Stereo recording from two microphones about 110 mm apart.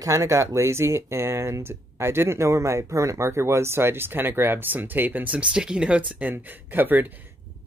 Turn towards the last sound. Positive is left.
turn(degrees=-15)  # may be behind; listen again after turning